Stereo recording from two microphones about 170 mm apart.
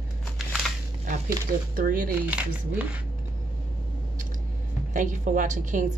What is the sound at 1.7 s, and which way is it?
Speech, 55° right (ahead or behind).